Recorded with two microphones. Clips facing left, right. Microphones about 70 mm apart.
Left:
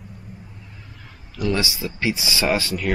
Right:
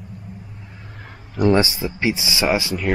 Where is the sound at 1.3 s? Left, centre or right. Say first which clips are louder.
Right 7 dB; right.